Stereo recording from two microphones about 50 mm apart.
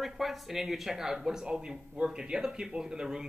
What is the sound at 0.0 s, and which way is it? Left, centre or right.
A man's voice, centre.